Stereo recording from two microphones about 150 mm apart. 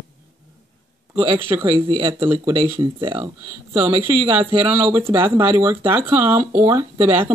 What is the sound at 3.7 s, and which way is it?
Speech, 15° right (ahead or behind).